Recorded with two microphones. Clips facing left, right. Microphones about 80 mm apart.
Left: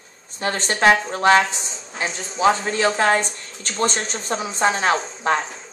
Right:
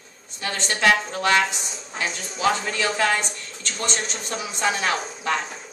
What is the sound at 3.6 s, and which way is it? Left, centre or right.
A woman's voice, left.